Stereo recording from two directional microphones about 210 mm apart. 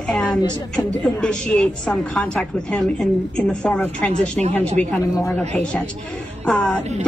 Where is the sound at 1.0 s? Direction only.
5° left (ahead or behind).